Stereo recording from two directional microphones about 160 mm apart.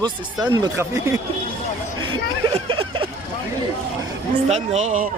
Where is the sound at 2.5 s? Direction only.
35° right (ahead or behind).